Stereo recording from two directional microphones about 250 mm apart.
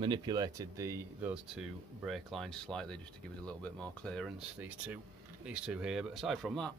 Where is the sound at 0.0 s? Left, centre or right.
Centre.